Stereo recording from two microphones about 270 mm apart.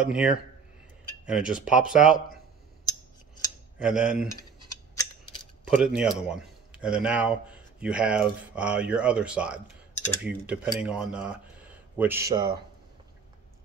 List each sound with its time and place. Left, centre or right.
0.0 s speech: centre
3.8 s speech: centre
5.8 s speech: centre